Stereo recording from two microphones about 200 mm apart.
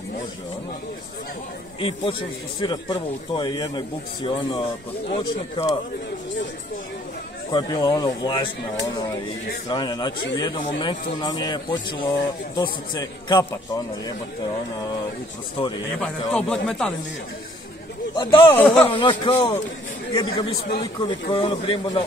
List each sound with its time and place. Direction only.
1.8 s a man's voice: 25° left (ahead or behind)
7.5 s a man's voice: 20° left (ahead or behind)
16.0 s speech: 5° left (ahead or behind)
18.1 s a man's voice: 25° left (ahead or behind)
18.5 s speech: 5° left (ahead or behind)
18.9 s a man's voice: 25° left (ahead or behind)